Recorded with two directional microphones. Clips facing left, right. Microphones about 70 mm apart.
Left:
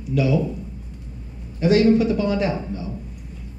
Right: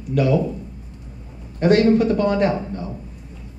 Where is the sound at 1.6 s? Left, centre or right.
Right.